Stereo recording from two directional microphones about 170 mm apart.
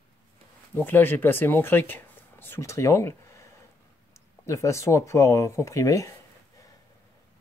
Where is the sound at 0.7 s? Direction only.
10° left (ahead or behind).